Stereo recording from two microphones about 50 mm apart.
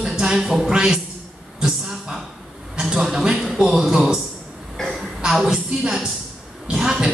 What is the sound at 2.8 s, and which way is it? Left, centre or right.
A man's voice, centre.